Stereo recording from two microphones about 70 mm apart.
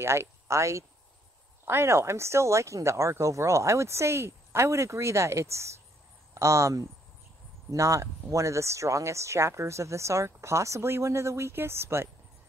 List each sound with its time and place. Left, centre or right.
0.0 s speech: right